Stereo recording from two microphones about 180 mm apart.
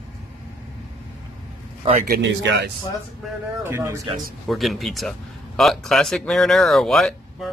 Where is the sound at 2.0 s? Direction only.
70° right (ahead or behind).